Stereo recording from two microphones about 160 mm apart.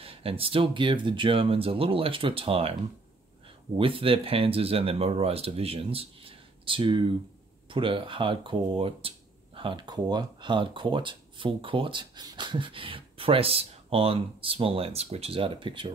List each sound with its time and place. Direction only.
0.0 s speech: 35° right (ahead or behind)
3.7 s speech: 35° right (ahead or behind)